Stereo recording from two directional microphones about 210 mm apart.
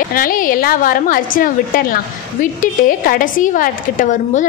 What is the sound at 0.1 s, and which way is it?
A woman's voice, 40° left (ahead or behind).